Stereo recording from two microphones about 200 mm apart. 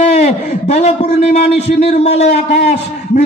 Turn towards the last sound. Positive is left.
turn(degrees=35)  # may be behind; listen again after turning